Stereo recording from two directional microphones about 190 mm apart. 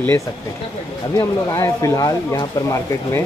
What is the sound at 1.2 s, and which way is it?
Speech, 15° left (ahead or behind).